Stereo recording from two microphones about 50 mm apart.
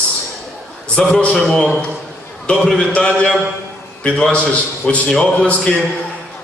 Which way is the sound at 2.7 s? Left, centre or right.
Centre.